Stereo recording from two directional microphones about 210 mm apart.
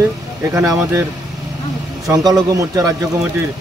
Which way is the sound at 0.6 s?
15° right (ahead or behind).